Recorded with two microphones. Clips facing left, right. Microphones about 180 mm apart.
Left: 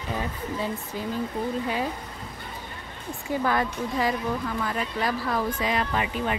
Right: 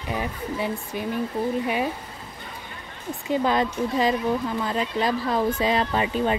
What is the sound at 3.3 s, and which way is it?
Speech, 20° right (ahead or behind).